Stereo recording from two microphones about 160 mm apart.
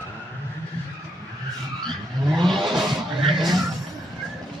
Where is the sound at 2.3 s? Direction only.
Centre (ahead or behind).